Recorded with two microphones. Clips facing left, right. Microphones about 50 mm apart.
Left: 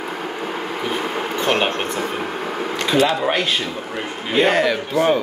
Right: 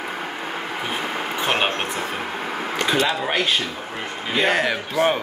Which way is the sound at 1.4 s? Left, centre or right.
Centre.